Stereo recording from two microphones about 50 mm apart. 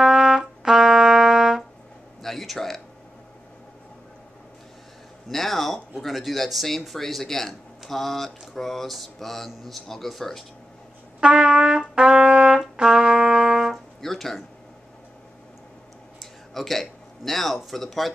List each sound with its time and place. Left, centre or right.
0.0 s trumpet: centre
2.2 s speech: centre
5.3 s speech: centre
11.1 s trumpet: centre
14.0 s a sound: centre
16.2 s a sound: centre
17.7 s speech: centre